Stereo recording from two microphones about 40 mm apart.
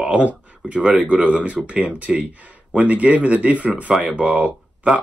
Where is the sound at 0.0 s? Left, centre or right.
Right.